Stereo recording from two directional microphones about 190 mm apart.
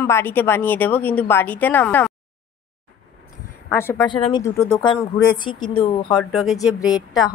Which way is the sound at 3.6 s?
15° left (ahead or behind).